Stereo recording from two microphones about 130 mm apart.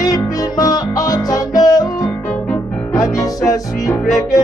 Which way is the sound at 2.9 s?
25° left (ahead or behind).